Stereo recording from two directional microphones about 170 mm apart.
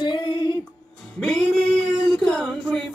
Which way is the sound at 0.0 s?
25° left (ahead or behind).